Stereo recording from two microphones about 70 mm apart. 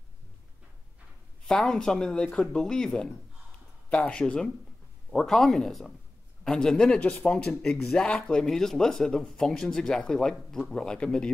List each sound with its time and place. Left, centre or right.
1.5 s speech: centre
4.1 s speech: centre